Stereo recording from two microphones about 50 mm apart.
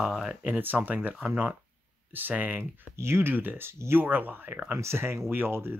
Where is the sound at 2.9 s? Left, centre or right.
Right.